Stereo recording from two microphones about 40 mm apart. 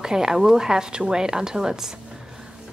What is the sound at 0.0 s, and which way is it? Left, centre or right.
A woman's voice, centre.